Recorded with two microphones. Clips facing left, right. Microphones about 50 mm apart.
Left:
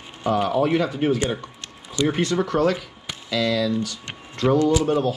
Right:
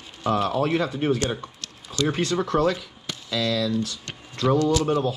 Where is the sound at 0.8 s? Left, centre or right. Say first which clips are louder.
Left 2 dB; left.